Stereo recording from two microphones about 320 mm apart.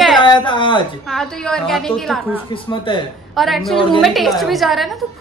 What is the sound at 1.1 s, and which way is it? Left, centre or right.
A woman's voice, centre.